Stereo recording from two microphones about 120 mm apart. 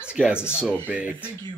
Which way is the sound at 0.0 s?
10° right (ahead or behind).